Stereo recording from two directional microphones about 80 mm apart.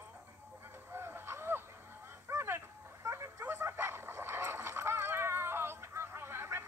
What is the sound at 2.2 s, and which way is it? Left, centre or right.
Dog, right.